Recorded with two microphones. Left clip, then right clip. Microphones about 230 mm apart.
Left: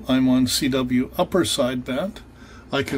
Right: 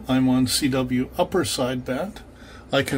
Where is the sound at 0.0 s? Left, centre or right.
Left.